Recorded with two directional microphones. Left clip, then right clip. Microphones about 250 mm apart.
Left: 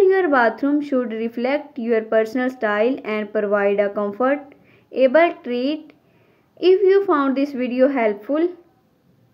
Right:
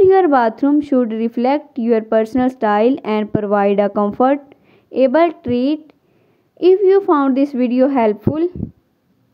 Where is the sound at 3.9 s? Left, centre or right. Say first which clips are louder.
Right 5 dB; right.